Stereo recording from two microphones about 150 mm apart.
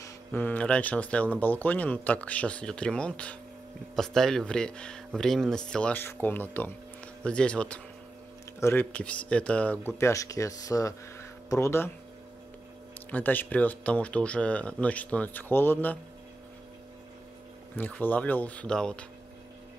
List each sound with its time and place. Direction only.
0.0 s speech: 15° left (ahead or behind)
13.1 s speech: 10° left (ahead or behind)
17.7 s speech: 10° left (ahead or behind)